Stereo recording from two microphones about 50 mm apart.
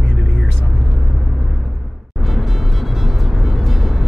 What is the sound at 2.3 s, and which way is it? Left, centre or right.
Music, centre.